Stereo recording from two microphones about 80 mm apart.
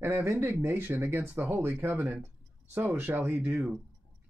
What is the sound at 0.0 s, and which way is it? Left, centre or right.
Speech, right.